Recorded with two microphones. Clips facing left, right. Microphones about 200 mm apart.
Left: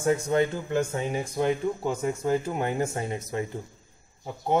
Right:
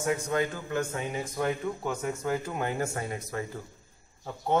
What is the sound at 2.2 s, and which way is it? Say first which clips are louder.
A man's voice: left 4 dB; 25° left (ahead or behind).